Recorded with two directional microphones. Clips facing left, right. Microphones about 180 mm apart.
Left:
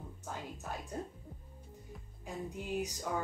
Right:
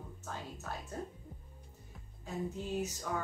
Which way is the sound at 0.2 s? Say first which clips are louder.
Left 1 dB; 15° left (ahead or behind).